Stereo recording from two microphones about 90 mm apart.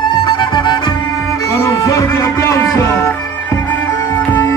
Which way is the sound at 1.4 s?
35° left (ahead or behind).